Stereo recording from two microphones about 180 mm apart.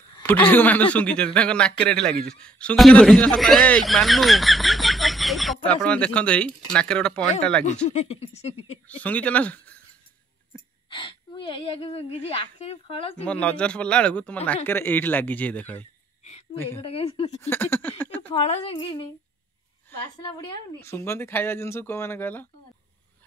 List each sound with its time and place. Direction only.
0.2 s a man's voice: 10° left (ahead or behind)
7.6 s speech: 40° left (ahead or behind)
8.8 s speech: 10° left (ahead or behind)
10.9 s speech: 25° left (ahead or behind)
13.2 s speech: 5° left (ahead or behind)
16.8 s speech: 30° left (ahead or behind)
17.4 s speech: 10° left (ahead or behind)
18.3 s speech: 35° left (ahead or behind)
20.2 s speech: 20° left (ahead or behind)